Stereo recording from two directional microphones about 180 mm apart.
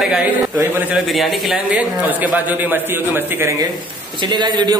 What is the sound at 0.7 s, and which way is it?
A man's voice, 10° right (ahead or behind).